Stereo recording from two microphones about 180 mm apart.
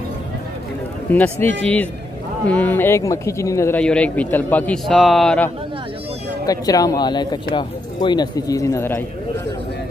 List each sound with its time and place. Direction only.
1.1 s speech: 10° left (ahead or behind)
6.4 s speech: 20° left (ahead or behind)